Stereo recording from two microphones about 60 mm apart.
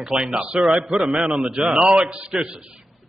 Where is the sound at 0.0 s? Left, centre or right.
Centre.